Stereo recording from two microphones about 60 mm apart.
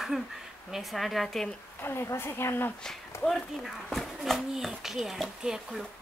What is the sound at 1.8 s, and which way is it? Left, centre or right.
Speech, left.